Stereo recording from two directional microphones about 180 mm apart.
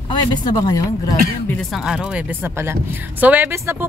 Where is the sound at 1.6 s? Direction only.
Centre (ahead or behind).